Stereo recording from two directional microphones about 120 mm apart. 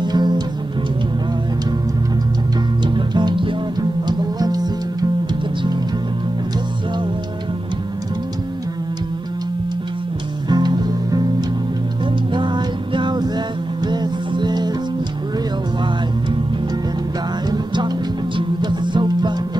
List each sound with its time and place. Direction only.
0.0 s music: 35° right (ahead or behind)
2.8 s music: 40° right (ahead or behind)
10.5 s music: 35° right (ahead or behind)
12.3 s music: 40° right (ahead or behind)
17.5 s music: 35° right (ahead or behind)